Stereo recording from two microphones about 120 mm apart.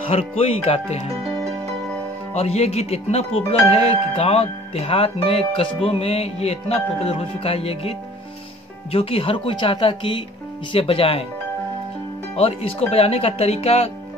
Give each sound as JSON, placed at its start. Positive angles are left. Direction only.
{"t": 0.1, "sound": "speech", "side_deg": 60}
{"t": 2.3, "sound": "speech", "side_deg": 65}
{"t": 8.9, "sound": "speech", "side_deg": 50}
{"t": 12.4, "sound": "speech", "side_deg": 55}